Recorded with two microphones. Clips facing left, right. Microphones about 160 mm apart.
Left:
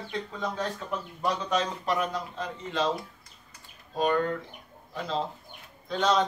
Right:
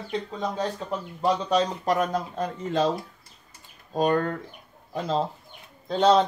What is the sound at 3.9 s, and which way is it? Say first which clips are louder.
Speech: right 3 dB; 45° right (ahead or behind).